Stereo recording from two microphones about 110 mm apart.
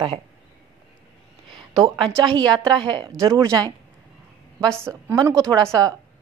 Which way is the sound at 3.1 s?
30° right (ahead or behind).